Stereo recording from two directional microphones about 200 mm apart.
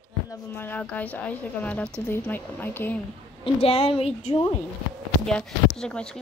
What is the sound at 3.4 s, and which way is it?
A woman's voice, 30° left (ahead or behind).